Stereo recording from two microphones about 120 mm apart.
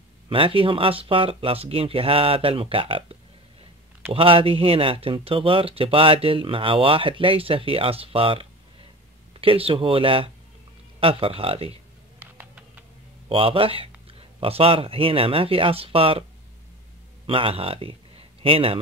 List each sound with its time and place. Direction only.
0.3 s speech: 45° right (ahead or behind)
12.2 s a sound: 15° right (ahead or behind)
13.3 s speech: 50° right (ahead or behind)
17.3 s a man's voice: 50° right (ahead or behind)